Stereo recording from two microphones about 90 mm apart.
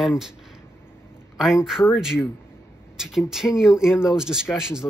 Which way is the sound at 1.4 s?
5° right (ahead or behind).